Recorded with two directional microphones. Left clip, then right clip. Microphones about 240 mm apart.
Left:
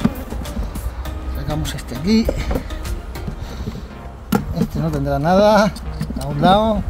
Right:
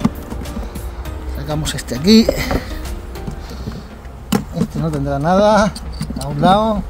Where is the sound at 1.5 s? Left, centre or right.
Right.